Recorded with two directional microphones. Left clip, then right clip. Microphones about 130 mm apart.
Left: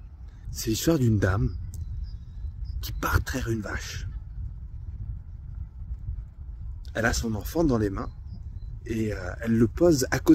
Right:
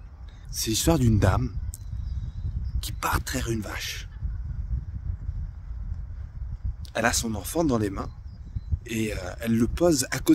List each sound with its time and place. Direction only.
0.5 s speech: 25° right (ahead or behind)
2.8 s speech: 20° right (ahead or behind)
6.9 s speech: 25° right (ahead or behind)